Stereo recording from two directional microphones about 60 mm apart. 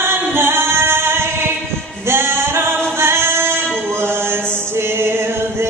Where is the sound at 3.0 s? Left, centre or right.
Right.